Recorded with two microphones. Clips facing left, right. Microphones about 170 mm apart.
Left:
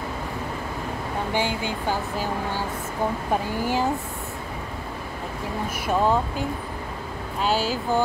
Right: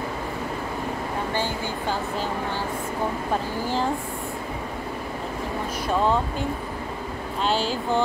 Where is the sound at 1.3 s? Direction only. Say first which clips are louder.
Left 2 dB; 15° left (ahead or behind).